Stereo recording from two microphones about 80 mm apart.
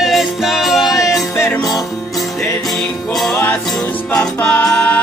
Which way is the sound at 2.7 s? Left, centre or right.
Centre.